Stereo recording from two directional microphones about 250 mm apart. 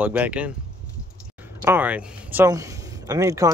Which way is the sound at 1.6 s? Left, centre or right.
Centre.